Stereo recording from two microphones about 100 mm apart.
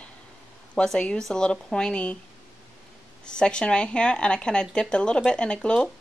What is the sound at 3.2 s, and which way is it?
Speech, 10° left (ahead or behind).